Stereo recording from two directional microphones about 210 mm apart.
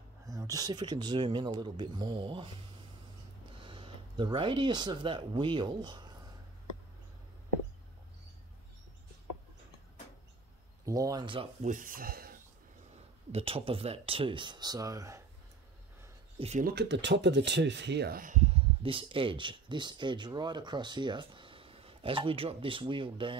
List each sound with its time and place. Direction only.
0.3 s speech: 15° right (ahead or behind)
3.6 s speech: 25° right (ahead or behind)
10.9 s speech: 15° right (ahead or behind)
11.6 s speech: 40° right (ahead or behind)
13.3 s speech: 25° right (ahead or behind)
16.3 s speech: 30° right (ahead or behind)
16.6 s speech: 55° right (ahead or behind); by 23.3 s 25° right (ahead or behind)